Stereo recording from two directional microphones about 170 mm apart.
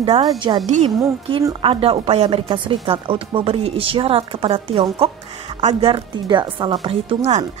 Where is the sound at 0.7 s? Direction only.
45° right (ahead or behind).